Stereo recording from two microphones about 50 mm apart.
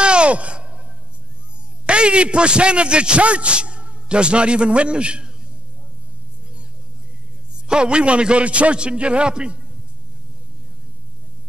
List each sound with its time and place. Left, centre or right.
0.0 s sigh: right
1.9 s a man's voice: right
7.5 s a man's voice: centre